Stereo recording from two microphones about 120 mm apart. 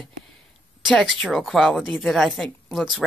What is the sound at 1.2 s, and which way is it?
Speech, centre (ahead or behind).